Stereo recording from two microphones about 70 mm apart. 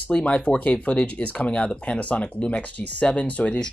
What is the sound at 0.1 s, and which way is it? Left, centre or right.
Speech, centre.